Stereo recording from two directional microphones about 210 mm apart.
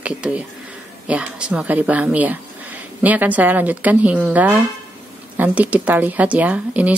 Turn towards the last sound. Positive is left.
turn(degrees=-5)  # may be behind; listen again after turning